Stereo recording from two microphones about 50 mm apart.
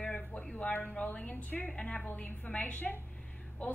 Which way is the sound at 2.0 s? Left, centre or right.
Left.